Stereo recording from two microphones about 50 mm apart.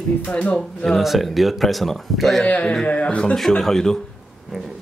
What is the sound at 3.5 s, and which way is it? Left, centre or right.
Speech, centre.